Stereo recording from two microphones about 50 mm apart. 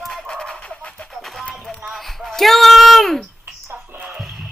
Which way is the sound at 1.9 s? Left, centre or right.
Centre.